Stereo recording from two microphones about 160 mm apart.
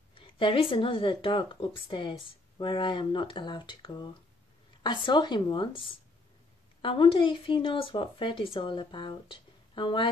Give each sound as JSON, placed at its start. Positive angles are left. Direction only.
{"t": 0.1, "sound": "a woman's voice", "side_deg": 30}